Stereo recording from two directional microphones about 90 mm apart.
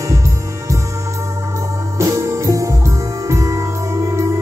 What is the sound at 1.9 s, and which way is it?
Music, 35° right (ahead or behind).